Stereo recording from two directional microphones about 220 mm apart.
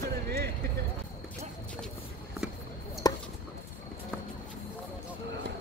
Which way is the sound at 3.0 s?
15° left (ahead or behind).